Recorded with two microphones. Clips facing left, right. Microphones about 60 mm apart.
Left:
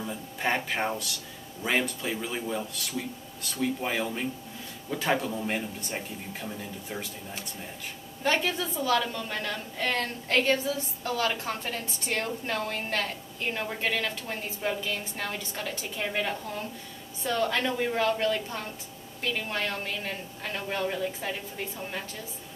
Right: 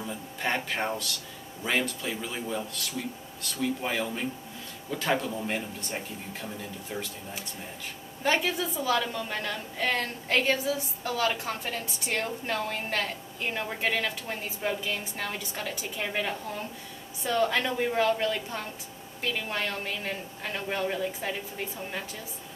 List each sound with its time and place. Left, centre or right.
0.0 s music: centre
1.6 s a woman's voice: centre
8.2 s a woman's voice: centre